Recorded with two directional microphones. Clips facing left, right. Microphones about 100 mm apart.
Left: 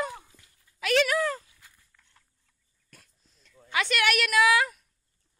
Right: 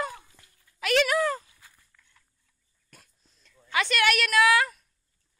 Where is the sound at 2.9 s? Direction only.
Centre (ahead or behind).